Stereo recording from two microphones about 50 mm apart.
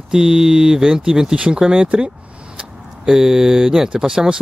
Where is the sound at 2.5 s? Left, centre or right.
Centre.